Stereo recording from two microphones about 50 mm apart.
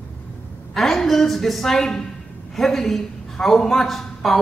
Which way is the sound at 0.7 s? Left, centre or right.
Centre.